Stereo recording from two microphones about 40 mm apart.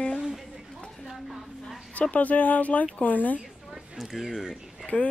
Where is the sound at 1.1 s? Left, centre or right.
Centre.